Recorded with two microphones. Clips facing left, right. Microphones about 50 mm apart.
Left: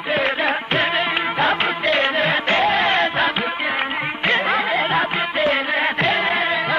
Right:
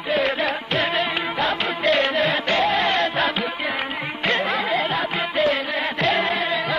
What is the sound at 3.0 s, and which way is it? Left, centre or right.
Music, centre.